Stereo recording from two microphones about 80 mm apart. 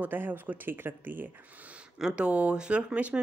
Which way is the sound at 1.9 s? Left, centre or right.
Centre.